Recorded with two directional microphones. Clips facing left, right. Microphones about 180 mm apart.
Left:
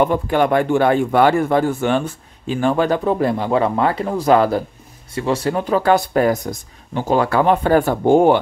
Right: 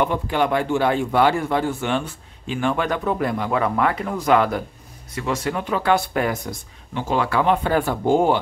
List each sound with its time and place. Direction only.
0.0 s speech: 50° left (ahead or behind)